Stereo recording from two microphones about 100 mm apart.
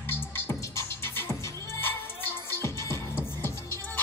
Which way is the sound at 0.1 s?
25° left (ahead or behind).